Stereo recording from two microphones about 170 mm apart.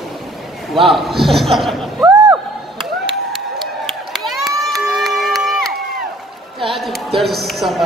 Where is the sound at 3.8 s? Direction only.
Centre (ahead or behind).